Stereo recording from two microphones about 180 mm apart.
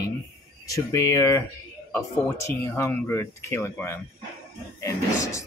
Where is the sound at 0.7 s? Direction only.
15° left (ahead or behind).